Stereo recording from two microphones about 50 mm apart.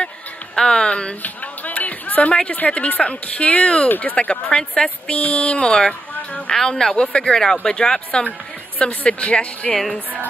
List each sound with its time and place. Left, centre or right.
0.6 s speech: centre
1.2 s speech: left
3.9 s speech: left
6.1 s a sound: left
6.8 s speech: centre
8.2 s a woman's voice: left